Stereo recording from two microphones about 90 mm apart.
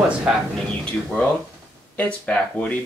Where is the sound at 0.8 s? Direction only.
15° left (ahead or behind).